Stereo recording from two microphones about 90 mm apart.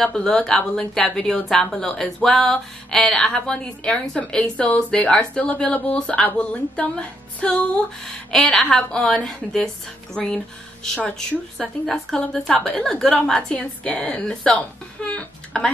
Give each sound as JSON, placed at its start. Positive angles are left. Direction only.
{"t": 0.0, "sound": "a woman's voice", "side_deg": 10}
{"t": 8.3, "sound": "a woman's voice", "side_deg": 5}